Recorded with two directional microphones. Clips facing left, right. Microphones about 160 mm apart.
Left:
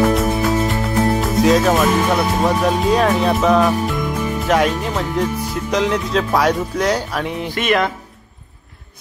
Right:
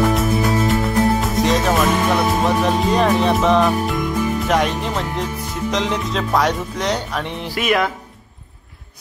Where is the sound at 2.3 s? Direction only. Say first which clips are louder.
Left 1 dB; centre (ahead or behind).